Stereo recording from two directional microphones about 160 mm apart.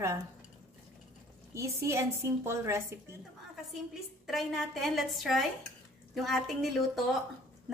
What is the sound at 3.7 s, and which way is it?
A woman's voice, centre (ahead or behind).